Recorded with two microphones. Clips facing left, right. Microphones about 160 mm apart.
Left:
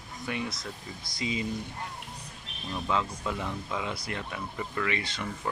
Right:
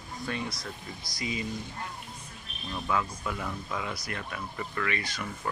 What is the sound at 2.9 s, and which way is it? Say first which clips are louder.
Speech: left 1 dB; 20° left (ahead or behind).